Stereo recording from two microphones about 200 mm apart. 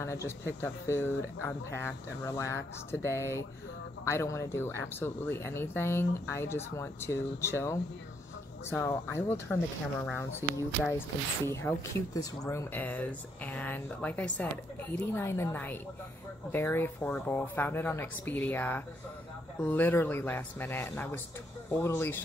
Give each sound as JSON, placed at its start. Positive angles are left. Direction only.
{"t": 0.0, "sound": "speech", "side_deg": 15}
{"t": 10.4, "sound": "speech", "side_deg": -15}
{"t": 10.9, "sound": "speech", "side_deg": 15}